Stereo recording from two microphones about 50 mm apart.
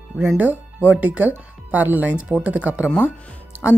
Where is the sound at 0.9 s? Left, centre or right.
Right.